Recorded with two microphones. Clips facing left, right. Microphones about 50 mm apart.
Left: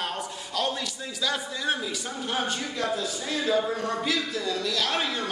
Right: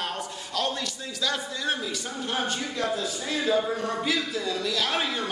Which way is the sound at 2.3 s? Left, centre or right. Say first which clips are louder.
Even; centre.